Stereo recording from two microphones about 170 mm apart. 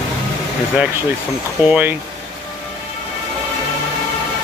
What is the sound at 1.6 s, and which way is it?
Speech, 10° right (ahead or behind).